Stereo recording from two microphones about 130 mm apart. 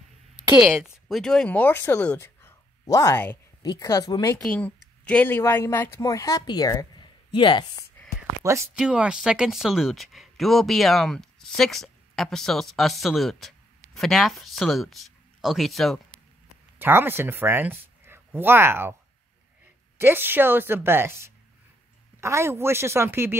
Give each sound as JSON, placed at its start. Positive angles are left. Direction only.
{"t": 0.7, "sound": "speech", "side_deg": 0}
{"t": 3.6, "sound": "a woman's voice", "side_deg": 30}
{"t": 4.4, "sound": "speech", "side_deg": 10}
{"t": 8.7, "sound": "speech", "side_deg": -5}
{"t": 16.7, "sound": "speech", "side_deg": -15}
{"t": 20.0, "sound": "a woman's voice", "side_deg": -15}